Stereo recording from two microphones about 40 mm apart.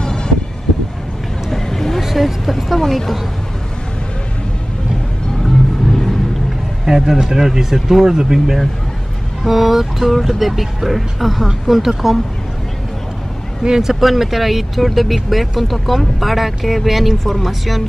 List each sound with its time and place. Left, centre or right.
0.0 s vehicle: centre
1.5 s vehicle: centre
2.0 s speech: centre
2.8 s speech: centre
5.4 s vehicle: centre
6.9 s speech: centre
13.7 s speech: centre